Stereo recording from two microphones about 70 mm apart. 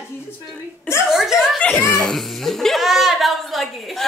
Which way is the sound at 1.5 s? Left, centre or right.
Centre.